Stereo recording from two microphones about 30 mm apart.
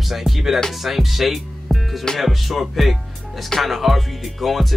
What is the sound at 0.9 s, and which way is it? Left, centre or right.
Speech, centre.